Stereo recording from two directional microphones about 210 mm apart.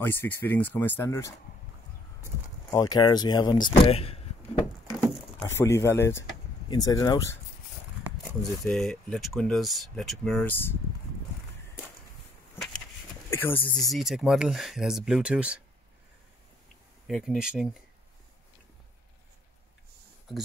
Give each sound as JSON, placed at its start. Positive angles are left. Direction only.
{"t": 0.0, "sound": "speech", "side_deg": 10}
{"t": 2.7, "sound": "speech", "side_deg": 20}
{"t": 5.4, "sound": "speech", "side_deg": 10}
{"t": 8.2, "sound": "speech", "side_deg": 0}
{"t": 13.3, "sound": "speech", "side_deg": 10}
{"t": 13.7, "sound": "speech", "side_deg": 0}
{"t": 17.1, "sound": "speech", "side_deg": 0}